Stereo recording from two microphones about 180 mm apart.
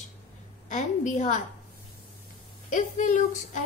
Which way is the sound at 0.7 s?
40° left (ahead or behind).